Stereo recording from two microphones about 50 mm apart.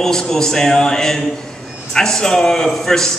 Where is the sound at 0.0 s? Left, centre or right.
Centre.